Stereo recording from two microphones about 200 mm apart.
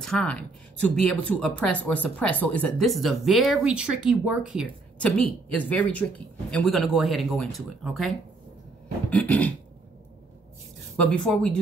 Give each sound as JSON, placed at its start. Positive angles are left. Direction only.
{"t": 0.0, "sound": "speech", "side_deg": 5}
{"t": 4.6, "sound": "speech", "side_deg": 5}
{"t": 11.0, "sound": "speech", "side_deg": 5}